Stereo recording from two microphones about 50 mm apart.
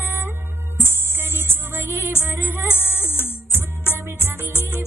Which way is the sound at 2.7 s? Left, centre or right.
Left.